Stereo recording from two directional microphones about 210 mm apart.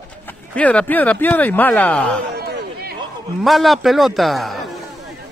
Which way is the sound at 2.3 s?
45° right (ahead or behind).